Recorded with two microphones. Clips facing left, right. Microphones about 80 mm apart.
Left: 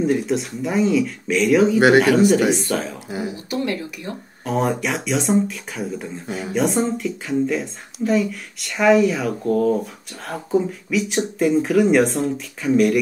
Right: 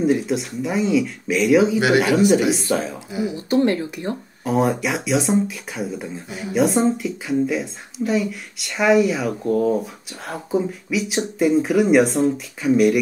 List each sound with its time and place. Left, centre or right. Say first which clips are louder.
0.0 s a woman's voice: even; centre
3.1 s speech: right 3 dB; left
3.4 s speech: right 9 dB; right
4.5 s a woman's voice: right 2 dB; centre